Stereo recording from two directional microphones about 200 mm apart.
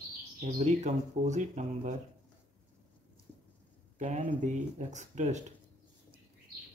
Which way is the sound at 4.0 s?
35° right (ahead or behind).